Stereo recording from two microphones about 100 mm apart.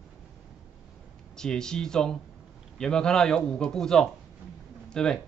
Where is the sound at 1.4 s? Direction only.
5° left (ahead or behind).